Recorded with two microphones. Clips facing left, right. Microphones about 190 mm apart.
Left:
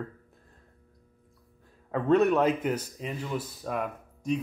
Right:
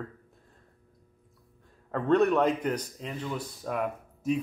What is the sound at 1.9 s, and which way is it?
Speech, 5° left (ahead or behind).